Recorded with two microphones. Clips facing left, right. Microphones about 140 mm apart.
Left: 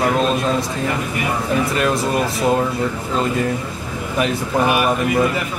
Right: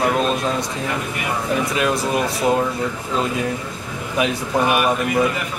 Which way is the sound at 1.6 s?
Centre (ahead or behind).